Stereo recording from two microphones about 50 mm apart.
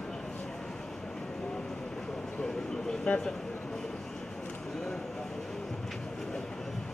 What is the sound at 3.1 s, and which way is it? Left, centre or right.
Speech, left.